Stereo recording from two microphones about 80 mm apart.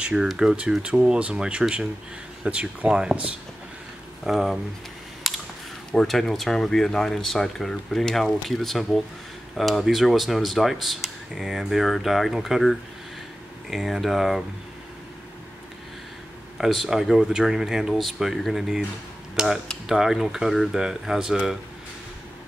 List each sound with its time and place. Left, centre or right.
0.0 s speech: centre
4.2 s speech: centre
5.2 s a sound: centre
5.9 s speech: centre
16.5 s speech: centre